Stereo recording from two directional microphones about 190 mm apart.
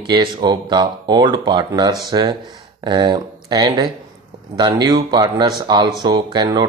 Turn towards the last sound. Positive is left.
turn(degrees=-20)  # may be behind; listen again after turning